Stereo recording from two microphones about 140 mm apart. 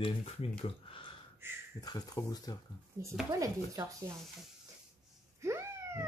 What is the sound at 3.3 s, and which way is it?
Speech, 25° right (ahead or behind).